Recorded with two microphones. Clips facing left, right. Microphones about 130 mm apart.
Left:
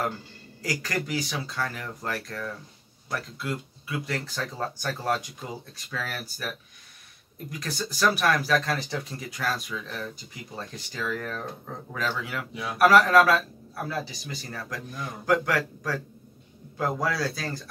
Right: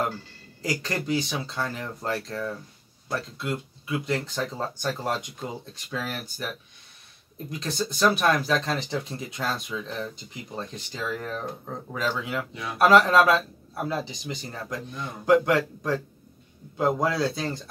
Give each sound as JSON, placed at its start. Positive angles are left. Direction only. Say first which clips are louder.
{"t": 0.6, "sound": "speech", "louder": "right 1 dB", "side_deg": -25}
{"t": 7.5, "sound": "speech", "louder": "right 4 dB", "side_deg": -25}